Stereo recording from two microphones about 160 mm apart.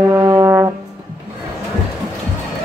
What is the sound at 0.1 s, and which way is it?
Brass instrument, 20° right (ahead or behind).